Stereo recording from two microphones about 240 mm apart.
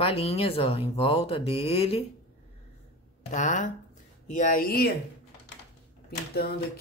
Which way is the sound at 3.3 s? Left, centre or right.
Left.